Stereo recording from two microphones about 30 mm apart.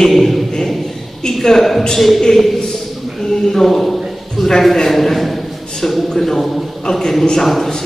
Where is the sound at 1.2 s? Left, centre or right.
Centre.